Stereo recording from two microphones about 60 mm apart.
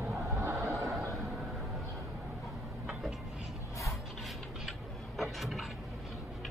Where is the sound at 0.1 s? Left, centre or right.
Right.